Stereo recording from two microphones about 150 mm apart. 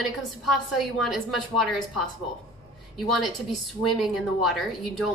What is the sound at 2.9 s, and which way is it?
Speech, centre (ahead or behind).